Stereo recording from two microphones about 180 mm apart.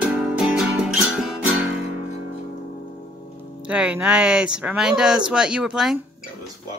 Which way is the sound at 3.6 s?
5° right (ahead or behind).